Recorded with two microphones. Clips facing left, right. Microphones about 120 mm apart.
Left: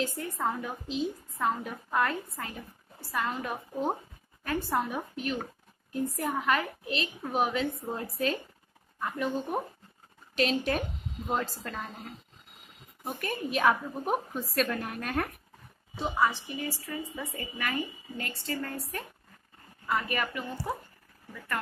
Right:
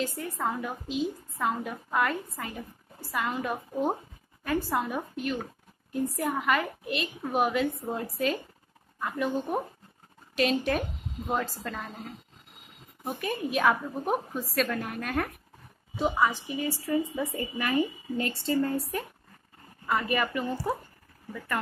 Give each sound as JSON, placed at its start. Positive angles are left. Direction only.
{"t": 0.2, "sound": "a woman's voice", "side_deg": 0}
{"t": 3.0, "sound": "a woman's voice", "side_deg": -10}
{"t": 13.0, "sound": "a woman's voice", "side_deg": 0}
{"t": 16.0, "sound": "a woman's voice", "side_deg": -15}
{"t": 17.1, "sound": "a woman's voice", "side_deg": -25}
{"t": 19.9, "sound": "a woman's voice", "side_deg": 0}